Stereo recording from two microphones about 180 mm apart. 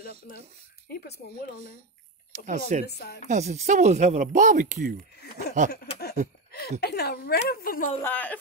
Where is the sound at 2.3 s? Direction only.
40° right (ahead or behind).